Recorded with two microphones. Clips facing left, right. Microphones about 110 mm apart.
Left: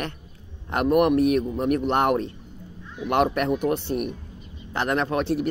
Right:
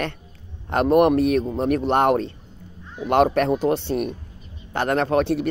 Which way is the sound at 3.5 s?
25° right (ahead or behind).